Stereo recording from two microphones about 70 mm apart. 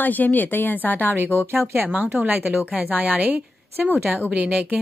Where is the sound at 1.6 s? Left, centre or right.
Right.